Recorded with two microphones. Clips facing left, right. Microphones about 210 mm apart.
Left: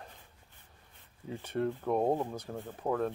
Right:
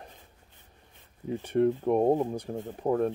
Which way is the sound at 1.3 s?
15° right (ahead or behind).